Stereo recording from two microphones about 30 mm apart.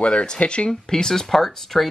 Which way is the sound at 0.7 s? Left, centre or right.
Centre.